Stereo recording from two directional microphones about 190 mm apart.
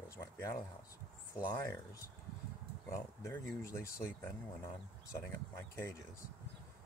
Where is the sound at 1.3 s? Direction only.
15° left (ahead or behind).